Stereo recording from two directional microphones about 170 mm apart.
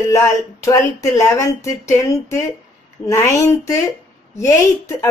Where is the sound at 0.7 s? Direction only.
20° left (ahead or behind).